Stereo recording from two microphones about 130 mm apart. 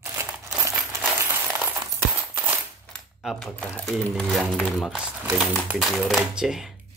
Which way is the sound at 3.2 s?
Centre (ahead or behind).